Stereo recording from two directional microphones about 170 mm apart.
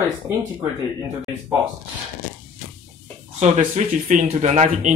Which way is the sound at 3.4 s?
45° right (ahead or behind).